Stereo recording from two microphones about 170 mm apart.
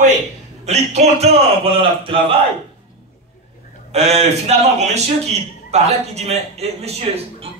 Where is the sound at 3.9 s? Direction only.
40° right (ahead or behind).